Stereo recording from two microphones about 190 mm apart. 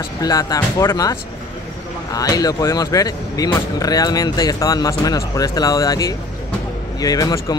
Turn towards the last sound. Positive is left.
turn(degrees=20)  # may be behind; listen again after turning